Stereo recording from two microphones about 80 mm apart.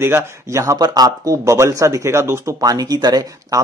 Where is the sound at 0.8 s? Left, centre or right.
Right.